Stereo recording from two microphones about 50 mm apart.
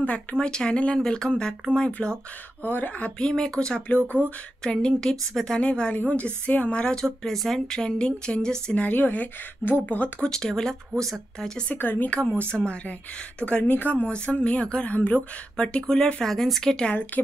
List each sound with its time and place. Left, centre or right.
0.0 s speech: left
2.6 s a woman's voice: left
3.2 s speech: centre
5.6 s speech: left
7.2 s speech: centre
7.8 s speech: centre
8.7 s a woman's voice: left
10.2 s speech: centre
11.7 s a woman's voice: left
12.5 s speech: centre
13.4 s speech: left
13.7 s speech: left
14.9 s a woman's voice: left
15.5 s speech: centre